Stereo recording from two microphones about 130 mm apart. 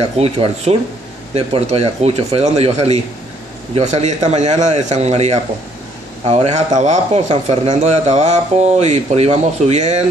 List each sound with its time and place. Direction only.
0.0 s a man's voice: 50° right (ahead or behind)